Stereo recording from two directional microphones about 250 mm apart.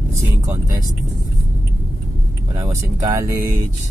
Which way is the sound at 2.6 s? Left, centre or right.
Centre.